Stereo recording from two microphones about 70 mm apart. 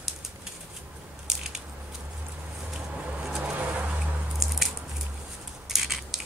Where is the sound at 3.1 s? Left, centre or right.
Centre.